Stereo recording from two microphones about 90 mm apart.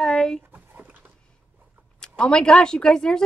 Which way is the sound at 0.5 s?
20° right (ahead or behind).